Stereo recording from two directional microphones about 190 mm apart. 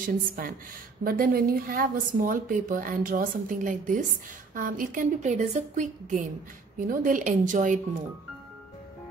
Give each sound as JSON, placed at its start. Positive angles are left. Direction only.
{"t": 0.0, "sound": "a woman's voice", "side_deg": -45}